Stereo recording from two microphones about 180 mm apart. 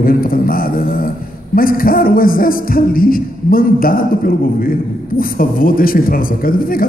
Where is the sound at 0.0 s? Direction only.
55° left (ahead or behind).